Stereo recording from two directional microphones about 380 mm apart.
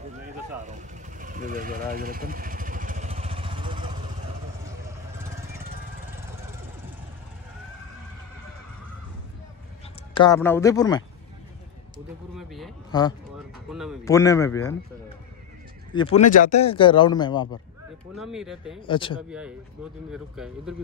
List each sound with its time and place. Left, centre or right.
0.7 s vehicle: centre
10.1 s a man's voice: centre
12.4 s speech: centre
12.9 s a man's voice: centre
13.7 s a man's voice: centre
18.1 s speech: centre
18.8 s a man's voice: centre
19.3 s speech: centre